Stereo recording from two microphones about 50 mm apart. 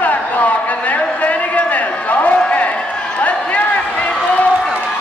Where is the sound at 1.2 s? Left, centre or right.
Left.